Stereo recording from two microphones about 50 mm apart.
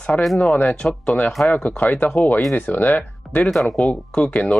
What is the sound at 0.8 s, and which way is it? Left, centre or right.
Speech, left.